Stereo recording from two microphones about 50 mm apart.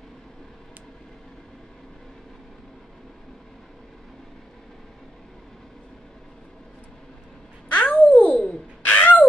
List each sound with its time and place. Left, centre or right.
7.7 s babbling: left
8.4 s bird: left